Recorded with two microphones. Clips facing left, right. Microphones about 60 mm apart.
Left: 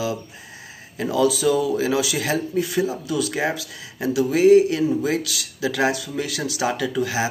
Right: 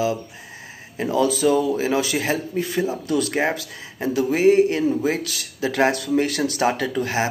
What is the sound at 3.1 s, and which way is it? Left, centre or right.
Speech, right.